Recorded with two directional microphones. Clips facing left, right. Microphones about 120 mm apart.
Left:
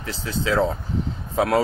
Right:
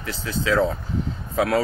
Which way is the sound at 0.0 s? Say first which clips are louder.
Even; 30° left (ahead or behind).